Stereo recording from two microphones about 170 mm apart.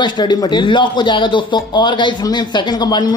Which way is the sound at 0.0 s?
25° left (ahead or behind).